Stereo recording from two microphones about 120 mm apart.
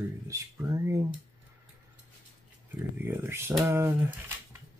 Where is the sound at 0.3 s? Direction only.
25° right (ahead or behind).